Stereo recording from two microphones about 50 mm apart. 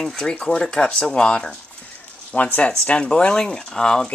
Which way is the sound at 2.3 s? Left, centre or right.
Left.